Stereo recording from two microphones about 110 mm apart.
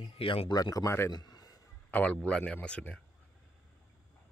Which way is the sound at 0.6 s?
35° left (ahead or behind).